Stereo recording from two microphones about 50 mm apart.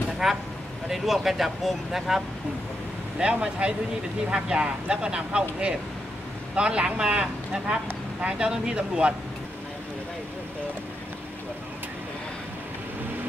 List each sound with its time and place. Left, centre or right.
0.2 s speech: centre
3.2 s speech: right